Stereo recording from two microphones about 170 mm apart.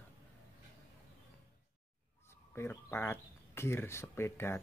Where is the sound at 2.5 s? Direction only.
15° left (ahead or behind).